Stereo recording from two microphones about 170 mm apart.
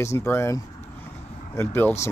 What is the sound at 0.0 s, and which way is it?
Speech, 15° left (ahead or behind).